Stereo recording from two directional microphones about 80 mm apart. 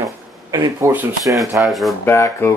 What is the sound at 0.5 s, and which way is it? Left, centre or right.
Speech, right.